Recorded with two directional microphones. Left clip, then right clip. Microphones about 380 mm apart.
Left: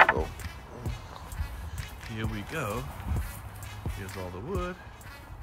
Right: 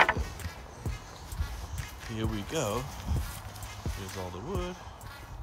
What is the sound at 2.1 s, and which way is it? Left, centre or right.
Speech, centre.